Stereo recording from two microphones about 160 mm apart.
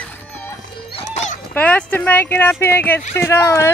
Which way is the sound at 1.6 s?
10° left (ahead or behind).